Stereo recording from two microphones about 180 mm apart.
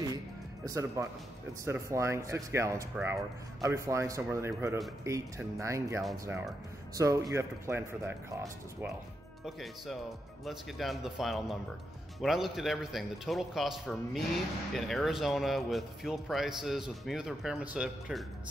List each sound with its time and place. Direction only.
0.7 s speech: 15° right (ahead or behind)
10.4 s speech: centre (ahead or behind)